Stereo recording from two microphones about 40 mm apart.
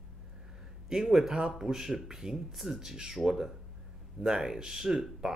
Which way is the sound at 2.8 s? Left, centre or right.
Centre.